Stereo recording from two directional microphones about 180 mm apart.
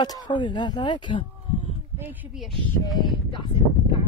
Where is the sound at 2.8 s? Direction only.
25° left (ahead or behind).